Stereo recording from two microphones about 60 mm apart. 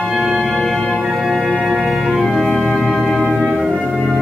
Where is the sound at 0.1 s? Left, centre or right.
Centre.